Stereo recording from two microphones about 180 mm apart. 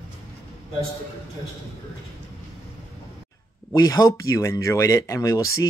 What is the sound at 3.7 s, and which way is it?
Speech, 20° left (ahead or behind).